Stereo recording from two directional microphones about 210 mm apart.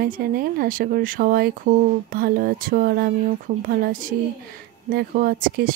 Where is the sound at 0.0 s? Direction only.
45° right (ahead or behind).